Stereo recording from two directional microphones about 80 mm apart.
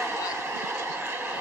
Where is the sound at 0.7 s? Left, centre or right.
Right.